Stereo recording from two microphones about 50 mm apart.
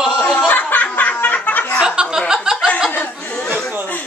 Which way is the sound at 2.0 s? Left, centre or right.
Right.